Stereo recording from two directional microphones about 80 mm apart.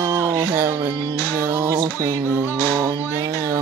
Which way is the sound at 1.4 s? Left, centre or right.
Right.